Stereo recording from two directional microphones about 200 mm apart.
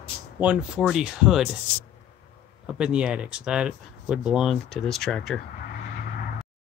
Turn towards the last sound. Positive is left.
turn(degrees=0)  # may be behind; listen again after turning